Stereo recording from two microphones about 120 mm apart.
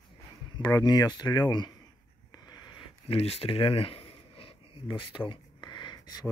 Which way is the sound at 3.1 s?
55° left (ahead or behind).